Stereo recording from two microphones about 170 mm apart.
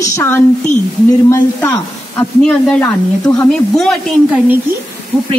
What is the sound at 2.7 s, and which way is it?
A woman's voice, 5° left (ahead or behind).